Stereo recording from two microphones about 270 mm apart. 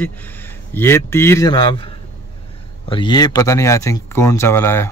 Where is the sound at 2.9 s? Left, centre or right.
Centre.